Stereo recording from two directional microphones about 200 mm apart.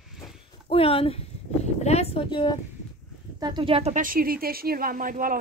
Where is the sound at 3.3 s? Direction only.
20° right (ahead or behind).